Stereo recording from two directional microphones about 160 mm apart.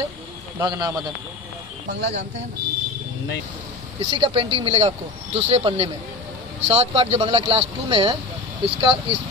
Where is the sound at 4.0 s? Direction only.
35° right (ahead or behind).